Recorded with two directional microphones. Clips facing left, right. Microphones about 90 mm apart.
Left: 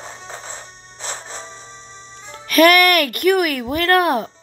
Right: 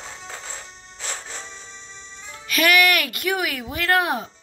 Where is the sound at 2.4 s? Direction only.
55° left (ahead or behind).